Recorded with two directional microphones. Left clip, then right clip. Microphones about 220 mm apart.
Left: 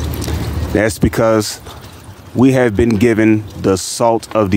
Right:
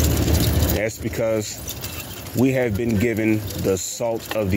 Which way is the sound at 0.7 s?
35° left (ahead or behind).